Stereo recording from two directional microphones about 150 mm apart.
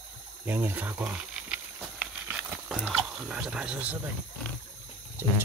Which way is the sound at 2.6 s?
Centre (ahead or behind).